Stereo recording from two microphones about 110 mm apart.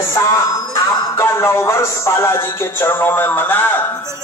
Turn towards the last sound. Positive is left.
turn(degrees=20)  # may be behind; listen again after turning